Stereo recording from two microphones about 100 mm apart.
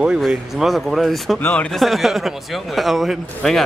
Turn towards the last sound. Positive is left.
turn(degrees=0)  # may be behind; listen again after turning